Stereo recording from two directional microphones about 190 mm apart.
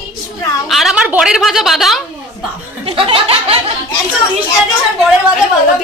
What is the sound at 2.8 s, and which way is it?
Chuckle, 30° right (ahead or behind).